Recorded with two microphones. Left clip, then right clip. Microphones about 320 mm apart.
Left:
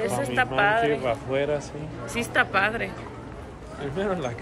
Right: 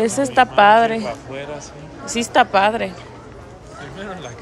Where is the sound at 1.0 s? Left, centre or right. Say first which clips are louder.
Left 3 dB; left.